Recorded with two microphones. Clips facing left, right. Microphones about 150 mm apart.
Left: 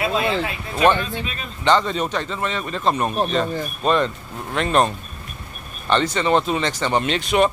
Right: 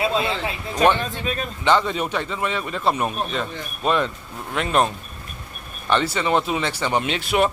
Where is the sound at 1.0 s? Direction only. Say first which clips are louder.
Right 2 dB; 45° right (ahead or behind).